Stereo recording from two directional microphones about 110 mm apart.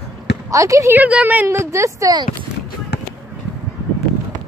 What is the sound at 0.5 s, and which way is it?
Speech, 30° right (ahead or behind).